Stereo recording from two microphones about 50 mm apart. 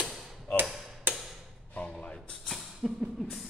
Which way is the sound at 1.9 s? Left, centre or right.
Centre.